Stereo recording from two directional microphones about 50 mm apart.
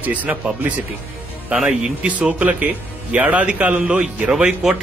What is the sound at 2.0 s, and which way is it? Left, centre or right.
A man's voice, right.